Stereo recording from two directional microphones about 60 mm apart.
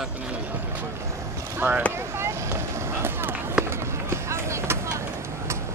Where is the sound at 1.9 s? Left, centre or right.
Right.